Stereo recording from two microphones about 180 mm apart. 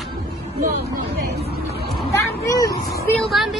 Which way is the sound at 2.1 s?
20° left (ahead or behind).